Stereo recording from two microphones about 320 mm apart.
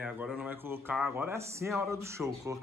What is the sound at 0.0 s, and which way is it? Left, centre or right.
Speech, centre.